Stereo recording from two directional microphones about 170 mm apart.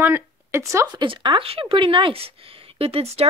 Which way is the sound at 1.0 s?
30° right (ahead or behind).